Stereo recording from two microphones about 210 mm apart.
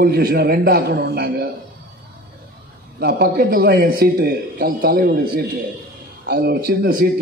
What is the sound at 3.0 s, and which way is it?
A man's voice, 50° right (ahead or behind).